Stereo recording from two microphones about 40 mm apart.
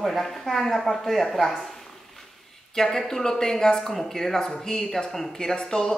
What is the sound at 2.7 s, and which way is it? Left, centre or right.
Speech, centre.